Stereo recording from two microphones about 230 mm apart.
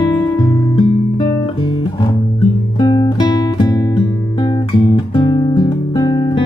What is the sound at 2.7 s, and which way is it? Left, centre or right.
Music, centre.